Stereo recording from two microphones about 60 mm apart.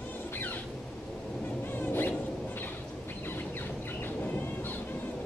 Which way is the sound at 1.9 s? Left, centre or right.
Left.